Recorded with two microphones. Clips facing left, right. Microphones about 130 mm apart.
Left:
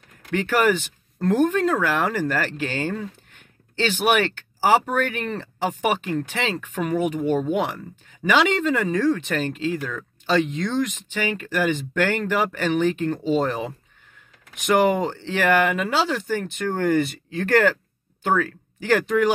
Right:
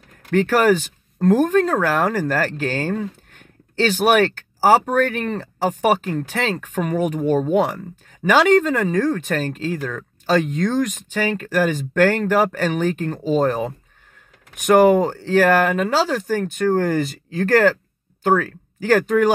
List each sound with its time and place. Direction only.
0.3 s speech: 45° right (ahead or behind)